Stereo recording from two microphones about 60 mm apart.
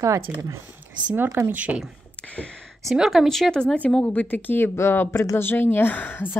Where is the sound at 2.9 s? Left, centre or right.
Centre.